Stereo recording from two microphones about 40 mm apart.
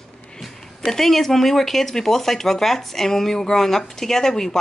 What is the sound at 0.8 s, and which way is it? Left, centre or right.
Speech, centre.